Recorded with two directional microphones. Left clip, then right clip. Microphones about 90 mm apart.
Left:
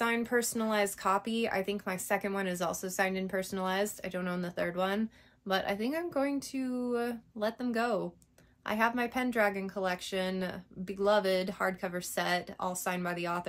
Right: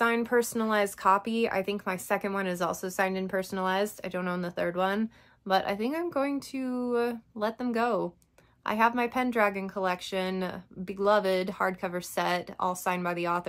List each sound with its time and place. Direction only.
0.0 s a woman's voice: 40° right (ahead or behind)